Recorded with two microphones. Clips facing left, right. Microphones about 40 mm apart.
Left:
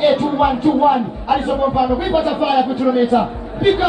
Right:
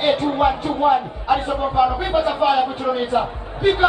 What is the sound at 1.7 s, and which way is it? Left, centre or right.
Speech, right.